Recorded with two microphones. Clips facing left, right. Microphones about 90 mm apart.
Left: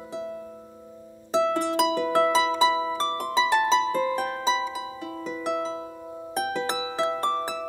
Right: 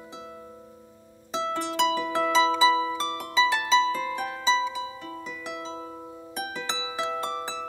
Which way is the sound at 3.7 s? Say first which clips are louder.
Left 1 dB; 45° left (ahead or behind).